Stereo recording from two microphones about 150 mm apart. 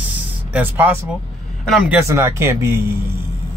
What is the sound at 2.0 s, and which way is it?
Speech, 20° right (ahead or behind).